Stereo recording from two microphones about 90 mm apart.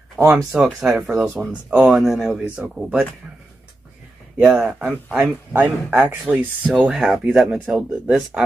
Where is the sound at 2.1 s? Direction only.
Centre (ahead or behind).